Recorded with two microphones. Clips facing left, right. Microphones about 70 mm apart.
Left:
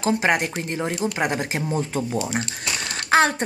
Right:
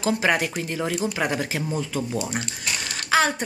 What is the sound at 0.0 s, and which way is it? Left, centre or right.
A woman's voice, left.